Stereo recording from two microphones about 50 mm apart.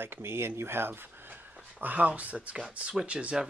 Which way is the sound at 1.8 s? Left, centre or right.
Right.